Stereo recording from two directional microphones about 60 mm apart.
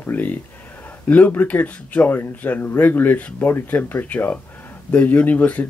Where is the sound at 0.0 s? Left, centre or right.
Left.